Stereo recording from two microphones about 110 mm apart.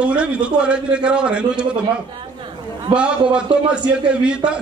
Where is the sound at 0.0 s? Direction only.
10° right (ahead or behind).